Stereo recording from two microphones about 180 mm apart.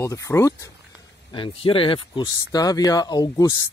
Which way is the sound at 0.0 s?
15° left (ahead or behind).